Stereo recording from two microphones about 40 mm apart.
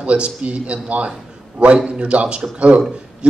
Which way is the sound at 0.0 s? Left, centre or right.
Right.